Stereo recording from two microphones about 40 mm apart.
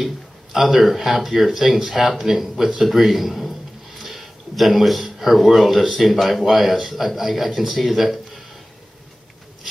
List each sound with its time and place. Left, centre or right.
0.0 s speech: centre